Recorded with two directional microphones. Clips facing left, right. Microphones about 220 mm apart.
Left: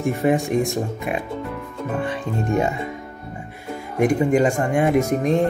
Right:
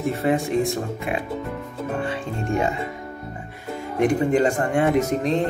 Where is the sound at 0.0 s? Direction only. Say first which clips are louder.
Left 2 dB; 15° left (ahead or behind).